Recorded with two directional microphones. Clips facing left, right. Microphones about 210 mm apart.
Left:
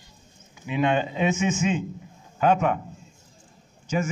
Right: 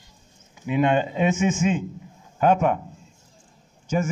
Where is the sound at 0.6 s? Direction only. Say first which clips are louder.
Right 3 dB; 45° right (ahead or behind).